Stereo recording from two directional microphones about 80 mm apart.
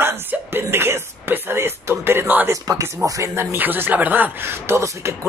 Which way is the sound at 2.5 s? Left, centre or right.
Right.